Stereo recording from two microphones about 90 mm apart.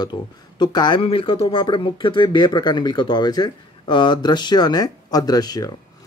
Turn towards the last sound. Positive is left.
turn(degrees=45)  # may be behind; listen again after turning